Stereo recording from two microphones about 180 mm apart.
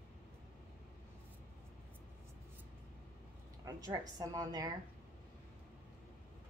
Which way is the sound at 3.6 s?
20° right (ahead or behind).